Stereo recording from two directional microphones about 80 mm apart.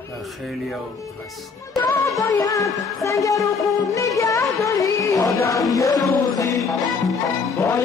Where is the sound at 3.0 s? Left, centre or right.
Left.